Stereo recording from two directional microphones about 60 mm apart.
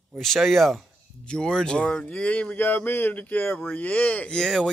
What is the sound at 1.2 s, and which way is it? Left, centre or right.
Speech, centre.